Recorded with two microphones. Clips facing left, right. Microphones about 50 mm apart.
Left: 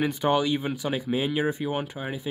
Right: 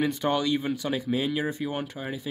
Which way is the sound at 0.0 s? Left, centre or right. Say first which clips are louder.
Left 2 dB; centre.